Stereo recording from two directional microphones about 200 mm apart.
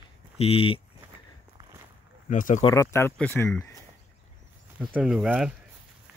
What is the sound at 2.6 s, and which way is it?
Speech, 15° left (ahead or behind).